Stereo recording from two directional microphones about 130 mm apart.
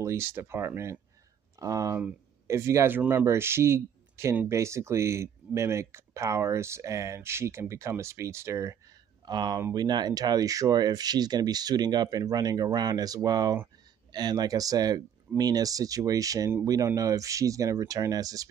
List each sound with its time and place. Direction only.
0.0 s speech: 20° right (ahead or behind)
9.2 s speech: 35° right (ahead or behind)
9.6 s speech: 20° right (ahead or behind)
9.8 s speech: 30° right (ahead or behind)